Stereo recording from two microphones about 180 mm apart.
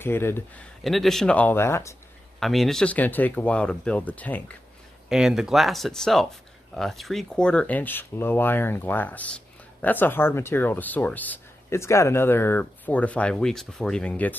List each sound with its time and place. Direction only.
0.0 s speech: 10° left (ahead or behind)
0.8 s speech: centre (ahead or behind)
2.4 s speech: centre (ahead or behind)
5.1 s speech: 5° right (ahead or behind)